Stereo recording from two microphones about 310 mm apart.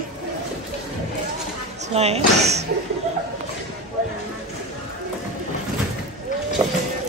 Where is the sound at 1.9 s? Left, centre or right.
Centre.